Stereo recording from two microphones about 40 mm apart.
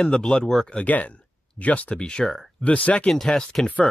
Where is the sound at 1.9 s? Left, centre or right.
Left.